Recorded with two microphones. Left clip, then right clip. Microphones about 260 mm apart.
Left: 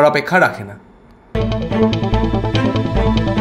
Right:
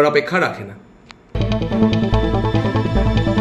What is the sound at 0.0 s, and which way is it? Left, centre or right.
Speech, left.